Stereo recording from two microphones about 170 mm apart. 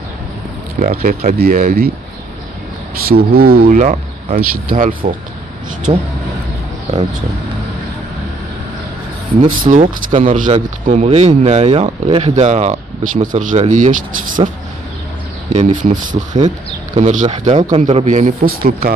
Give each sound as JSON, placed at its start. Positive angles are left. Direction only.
{"t": 0.7, "sound": "speech", "side_deg": -55}
{"t": 3.1, "sound": "speech", "side_deg": -60}
{"t": 5.9, "sound": "speech", "side_deg": -30}
{"t": 9.5, "sound": "speech", "side_deg": -50}
{"t": 15.5, "sound": "speech", "side_deg": -50}